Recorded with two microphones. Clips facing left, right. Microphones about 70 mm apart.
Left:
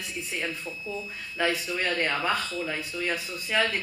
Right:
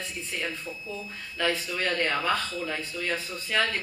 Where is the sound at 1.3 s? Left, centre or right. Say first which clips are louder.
Left 1 dB; centre.